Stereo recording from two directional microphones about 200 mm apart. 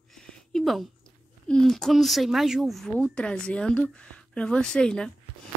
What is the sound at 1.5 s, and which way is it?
Speech, centre (ahead or behind).